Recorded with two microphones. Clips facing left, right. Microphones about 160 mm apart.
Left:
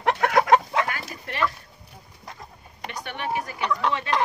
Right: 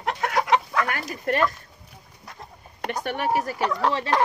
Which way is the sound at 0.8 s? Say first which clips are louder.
Right 6 dB; 50° right (ahead or behind).